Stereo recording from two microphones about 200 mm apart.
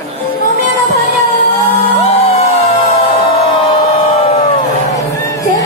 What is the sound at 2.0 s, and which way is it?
Music, 30° left (ahead or behind).